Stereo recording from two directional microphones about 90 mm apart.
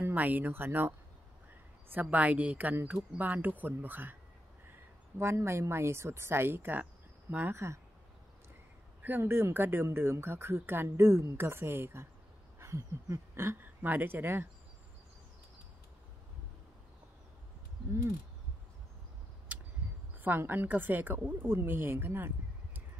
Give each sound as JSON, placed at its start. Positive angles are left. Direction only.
{"t": 0.0, "sound": "speech", "side_deg": -20}
{"t": 5.2, "sound": "speech", "side_deg": -30}
{"t": 7.5, "sound": "speech", "side_deg": -30}
{"t": 9.0, "sound": "speech", "side_deg": -25}
{"t": 20.2, "sound": "speech", "side_deg": -20}